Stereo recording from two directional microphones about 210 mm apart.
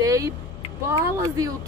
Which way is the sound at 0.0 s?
15° right (ahead or behind).